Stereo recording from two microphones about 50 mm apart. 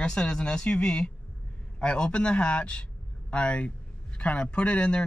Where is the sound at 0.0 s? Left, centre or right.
Centre.